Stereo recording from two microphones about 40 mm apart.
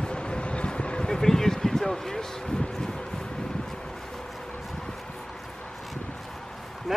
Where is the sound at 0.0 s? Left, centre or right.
Left.